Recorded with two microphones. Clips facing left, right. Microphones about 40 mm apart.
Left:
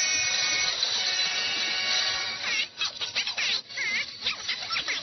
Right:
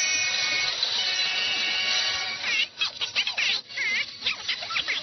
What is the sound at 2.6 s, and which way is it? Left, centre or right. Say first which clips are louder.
Music: right 3 dB; right.